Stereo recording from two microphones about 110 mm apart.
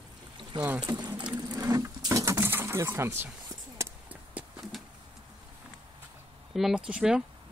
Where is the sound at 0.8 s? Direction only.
40° right (ahead or behind).